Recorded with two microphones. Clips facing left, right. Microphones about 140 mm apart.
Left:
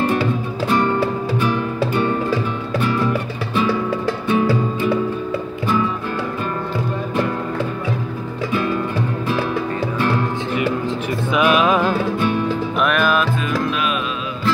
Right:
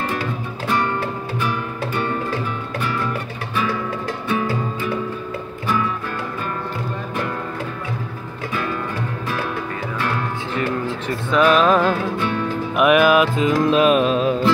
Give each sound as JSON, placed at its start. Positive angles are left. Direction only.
{"t": 3.1, "sound": "music", "side_deg": 30}
{"t": 11.3, "sound": "music", "side_deg": 10}
{"t": 12.7, "sound": "music", "side_deg": -10}
{"t": 13.7, "sound": "music", "side_deg": -35}